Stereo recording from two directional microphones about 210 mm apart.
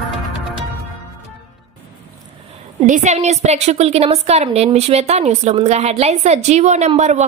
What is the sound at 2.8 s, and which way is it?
A woman's voice, 35° right (ahead or behind).